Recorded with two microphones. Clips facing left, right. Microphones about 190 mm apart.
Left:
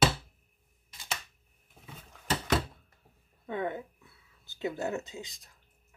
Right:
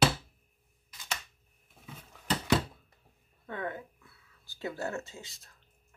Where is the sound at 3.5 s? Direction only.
20° left (ahead or behind).